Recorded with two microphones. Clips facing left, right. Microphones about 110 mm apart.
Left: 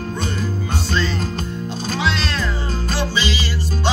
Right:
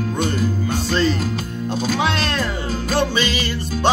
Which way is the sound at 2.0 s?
50° right (ahead or behind).